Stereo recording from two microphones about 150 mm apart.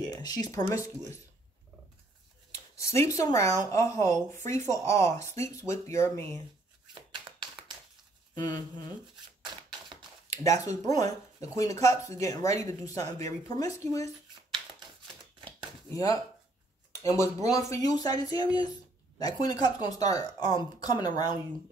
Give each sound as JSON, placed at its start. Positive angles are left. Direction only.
{"t": 0.0, "sound": "speech", "side_deg": 25}
{"t": 2.5, "sound": "speech", "side_deg": 20}
{"t": 8.4, "sound": "speech", "side_deg": 30}
{"t": 10.5, "sound": "speech", "side_deg": 20}
{"t": 15.9, "sound": "speech", "side_deg": 20}
{"t": 17.6, "sound": "speech", "side_deg": 25}